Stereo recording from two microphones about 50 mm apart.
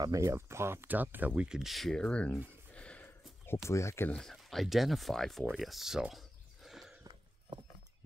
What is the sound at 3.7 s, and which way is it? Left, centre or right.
Speech, left.